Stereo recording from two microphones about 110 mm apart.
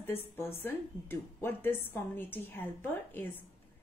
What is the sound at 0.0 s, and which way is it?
A woman's voice, 20° left (ahead or behind).